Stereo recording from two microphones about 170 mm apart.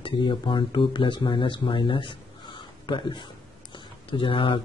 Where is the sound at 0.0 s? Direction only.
30° left (ahead or behind).